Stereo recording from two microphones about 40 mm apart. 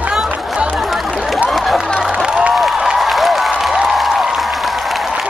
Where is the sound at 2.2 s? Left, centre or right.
Right.